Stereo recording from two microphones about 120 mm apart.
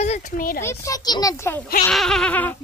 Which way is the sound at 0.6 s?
25° left (ahead or behind).